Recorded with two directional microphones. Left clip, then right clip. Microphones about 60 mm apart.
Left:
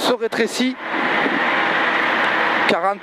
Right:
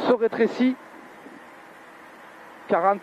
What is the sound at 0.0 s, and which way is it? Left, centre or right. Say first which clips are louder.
Speech: left 2 dB; left.